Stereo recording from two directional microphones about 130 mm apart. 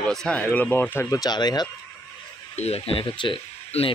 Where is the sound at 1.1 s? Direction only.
30° left (ahead or behind).